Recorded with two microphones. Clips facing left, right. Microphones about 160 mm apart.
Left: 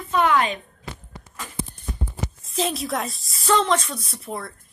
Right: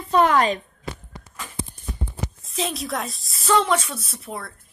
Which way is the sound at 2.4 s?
Centre (ahead or behind).